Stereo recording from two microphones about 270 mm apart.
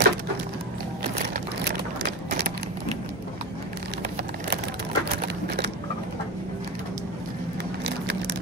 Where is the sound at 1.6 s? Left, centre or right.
Right.